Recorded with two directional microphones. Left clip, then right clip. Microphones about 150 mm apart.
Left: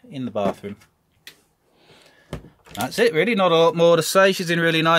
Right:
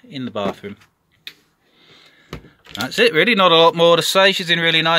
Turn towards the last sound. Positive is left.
turn(degrees=0)  # may be behind; listen again after turning